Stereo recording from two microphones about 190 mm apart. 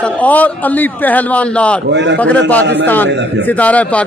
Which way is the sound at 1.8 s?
65° right (ahead or behind).